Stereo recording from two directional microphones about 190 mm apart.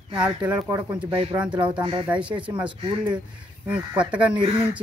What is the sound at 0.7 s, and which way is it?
Speech, 15° right (ahead or behind).